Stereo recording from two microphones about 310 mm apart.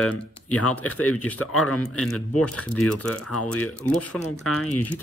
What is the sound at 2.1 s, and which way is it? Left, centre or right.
Speech, left.